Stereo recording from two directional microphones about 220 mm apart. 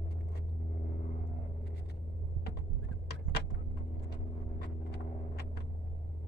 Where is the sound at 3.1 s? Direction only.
45° left (ahead or behind).